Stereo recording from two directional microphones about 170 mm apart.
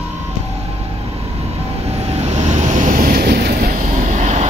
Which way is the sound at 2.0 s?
40° right (ahead or behind).